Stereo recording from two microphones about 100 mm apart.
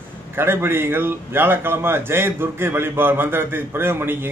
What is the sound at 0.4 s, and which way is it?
A man's voice, 25° right (ahead or behind).